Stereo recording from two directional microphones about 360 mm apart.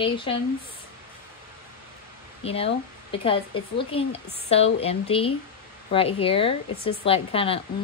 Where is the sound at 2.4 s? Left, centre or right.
Centre.